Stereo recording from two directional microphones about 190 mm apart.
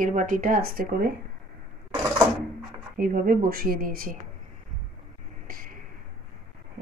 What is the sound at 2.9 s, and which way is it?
Speech, 50° right (ahead or behind).